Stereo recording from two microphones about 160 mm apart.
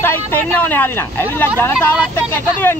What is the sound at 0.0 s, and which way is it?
Speech, 10° left (ahead or behind).